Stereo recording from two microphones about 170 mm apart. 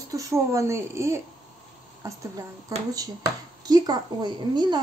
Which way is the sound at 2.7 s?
20° right (ahead or behind).